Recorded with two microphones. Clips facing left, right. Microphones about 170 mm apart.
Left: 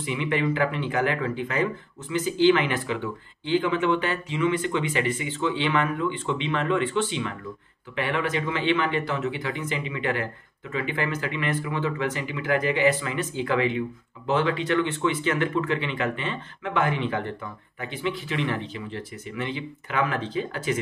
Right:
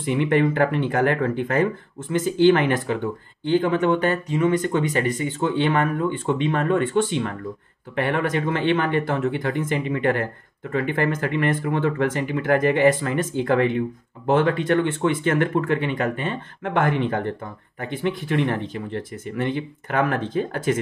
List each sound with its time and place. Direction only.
0.0 s speech: 50° right (ahead or behind)